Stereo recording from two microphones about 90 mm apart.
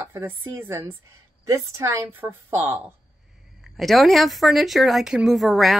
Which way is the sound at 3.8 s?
Centre (ahead or behind).